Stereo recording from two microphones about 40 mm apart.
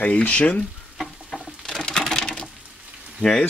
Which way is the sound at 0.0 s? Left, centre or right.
Left.